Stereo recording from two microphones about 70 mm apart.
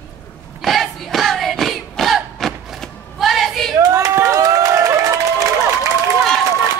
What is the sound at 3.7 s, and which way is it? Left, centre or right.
Crowd, right.